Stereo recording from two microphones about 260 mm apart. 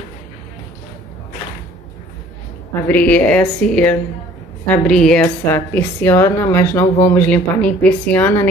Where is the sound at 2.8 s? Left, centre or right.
Centre.